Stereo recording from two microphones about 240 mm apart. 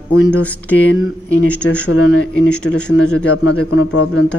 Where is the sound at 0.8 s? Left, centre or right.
Left.